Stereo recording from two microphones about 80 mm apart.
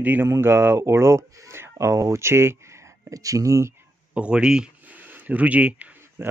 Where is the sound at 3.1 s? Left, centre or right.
Right.